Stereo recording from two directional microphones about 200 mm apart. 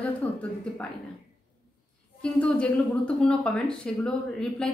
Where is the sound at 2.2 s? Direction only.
5° left (ahead or behind).